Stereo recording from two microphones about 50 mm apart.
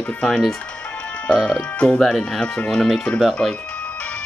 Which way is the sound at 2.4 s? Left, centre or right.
Left.